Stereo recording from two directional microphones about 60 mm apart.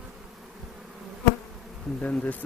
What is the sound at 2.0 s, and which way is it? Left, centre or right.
Speech, left.